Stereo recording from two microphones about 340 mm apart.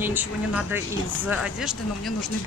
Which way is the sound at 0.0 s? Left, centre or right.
Centre.